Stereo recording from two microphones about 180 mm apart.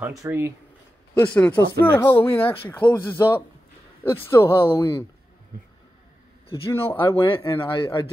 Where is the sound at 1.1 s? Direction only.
10° left (ahead or behind).